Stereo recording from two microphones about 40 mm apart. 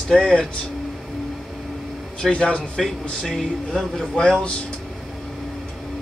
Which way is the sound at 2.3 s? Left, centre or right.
Left.